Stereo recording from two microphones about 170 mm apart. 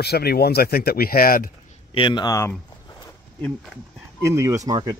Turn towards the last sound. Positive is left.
turn(degrees=-25)  # may be behind; listen again after turning